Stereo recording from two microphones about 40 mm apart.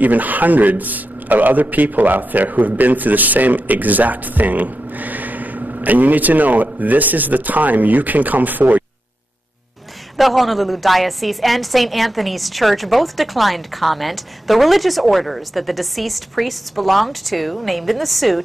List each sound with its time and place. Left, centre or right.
0.0 s a man's voice: right
10.1 s a woman's voice: centre